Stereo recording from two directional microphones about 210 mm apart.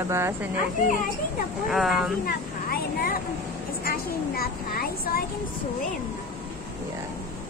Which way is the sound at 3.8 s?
45° left (ahead or behind).